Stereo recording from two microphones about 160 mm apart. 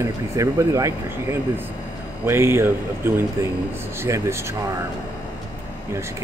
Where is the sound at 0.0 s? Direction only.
20° right (ahead or behind).